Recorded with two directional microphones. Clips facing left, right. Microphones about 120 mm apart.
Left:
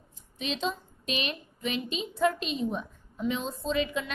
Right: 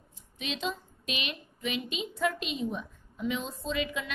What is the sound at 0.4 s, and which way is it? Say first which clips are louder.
A woman's voice: left 3 dB; 30° left (ahead or behind).